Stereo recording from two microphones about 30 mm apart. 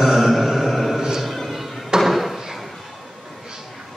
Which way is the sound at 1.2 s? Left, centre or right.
Centre.